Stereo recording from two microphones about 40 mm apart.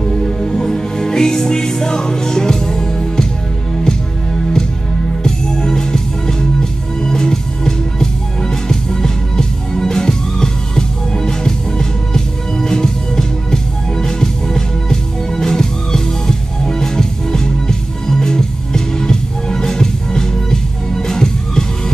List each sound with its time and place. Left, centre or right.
0.0 s music: centre